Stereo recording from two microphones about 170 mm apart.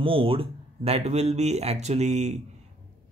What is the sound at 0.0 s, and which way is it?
Speech, 30° right (ahead or behind).